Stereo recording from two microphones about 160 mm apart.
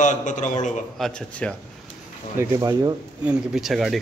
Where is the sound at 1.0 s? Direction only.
5° left (ahead or behind).